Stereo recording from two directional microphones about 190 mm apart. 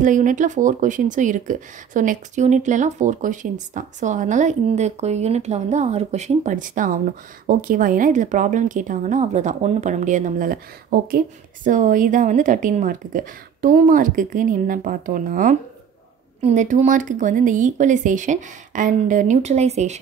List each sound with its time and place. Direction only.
0.0 s speech: 45° right (ahead or behind)